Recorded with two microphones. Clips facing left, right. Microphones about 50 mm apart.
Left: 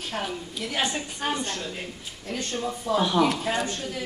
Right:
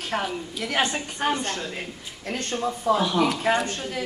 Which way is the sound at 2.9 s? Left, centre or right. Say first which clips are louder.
Right 3 dB; right.